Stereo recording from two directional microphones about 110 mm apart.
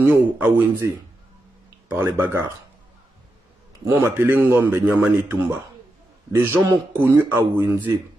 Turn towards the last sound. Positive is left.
turn(degrees=-20)  # may be behind; listen again after turning